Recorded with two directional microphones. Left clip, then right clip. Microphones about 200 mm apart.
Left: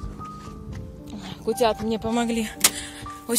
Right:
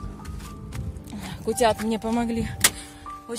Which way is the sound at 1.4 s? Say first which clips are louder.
Even; 15° right (ahead or behind).